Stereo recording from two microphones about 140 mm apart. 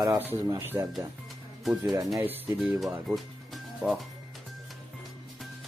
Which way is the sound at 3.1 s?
Centre (ahead or behind).